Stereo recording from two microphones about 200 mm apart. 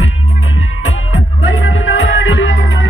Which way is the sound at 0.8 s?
70° left (ahead or behind).